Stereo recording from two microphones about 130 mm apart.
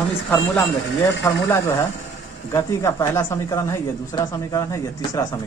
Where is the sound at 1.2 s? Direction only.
20° left (ahead or behind).